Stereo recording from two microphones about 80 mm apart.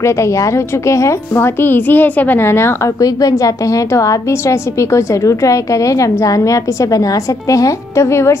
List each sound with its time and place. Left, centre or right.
0.0 s a woman's voice: left
3.0 s a woman's voice: left